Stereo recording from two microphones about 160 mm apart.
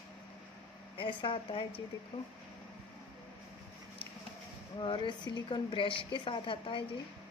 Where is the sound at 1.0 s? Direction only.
30° left (ahead or behind).